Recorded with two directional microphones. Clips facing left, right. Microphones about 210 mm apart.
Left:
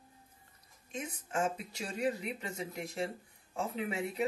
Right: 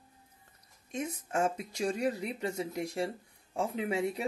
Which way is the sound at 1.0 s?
45° right (ahead or behind).